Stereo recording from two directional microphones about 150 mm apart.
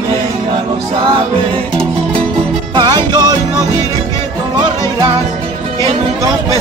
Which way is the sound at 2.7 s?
30° right (ahead or behind).